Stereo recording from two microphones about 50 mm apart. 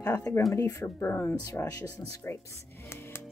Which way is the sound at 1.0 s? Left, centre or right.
Left.